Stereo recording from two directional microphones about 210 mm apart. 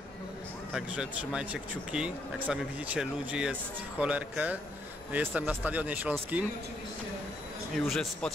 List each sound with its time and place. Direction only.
0.7 s speech: 5° right (ahead or behind)
7.8 s speech: centre (ahead or behind)